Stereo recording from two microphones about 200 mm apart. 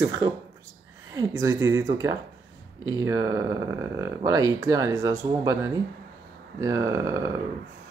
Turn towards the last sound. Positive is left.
turn(degrees=-15)  # may be behind; listen again after turning